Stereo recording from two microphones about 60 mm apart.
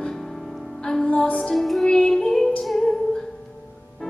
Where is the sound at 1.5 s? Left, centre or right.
Centre.